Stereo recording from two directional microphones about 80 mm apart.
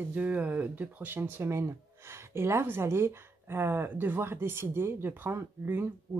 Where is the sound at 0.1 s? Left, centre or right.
Centre.